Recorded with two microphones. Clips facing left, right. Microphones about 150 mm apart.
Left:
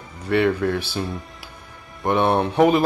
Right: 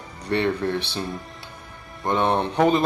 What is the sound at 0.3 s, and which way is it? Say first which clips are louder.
Speech: left 3 dB; 30° right (ahead or behind).